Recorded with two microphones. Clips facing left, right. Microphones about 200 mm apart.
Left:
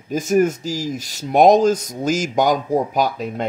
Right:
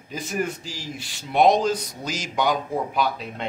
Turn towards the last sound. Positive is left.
turn(degrees=45)  # may be behind; listen again after turning